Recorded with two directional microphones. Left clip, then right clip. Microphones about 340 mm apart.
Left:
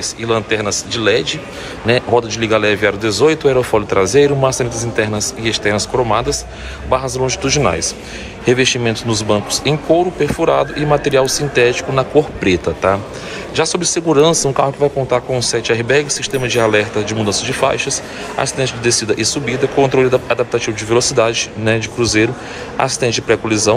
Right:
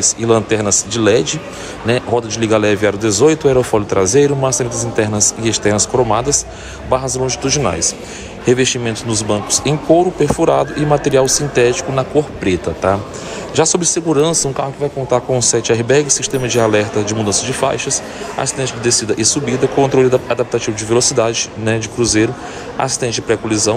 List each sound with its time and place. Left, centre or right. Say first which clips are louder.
0.0 s a man's voice: right 4 dB; centre